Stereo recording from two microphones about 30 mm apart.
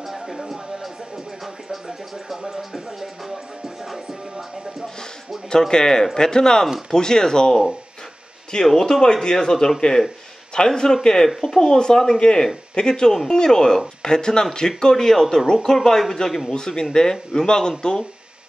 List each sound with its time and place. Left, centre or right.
0.0 s a sound: centre
5.7 s a man's voice: left
8.6 s a man's voice: centre
15.0 s speech: centre
16.5 s a man's voice: left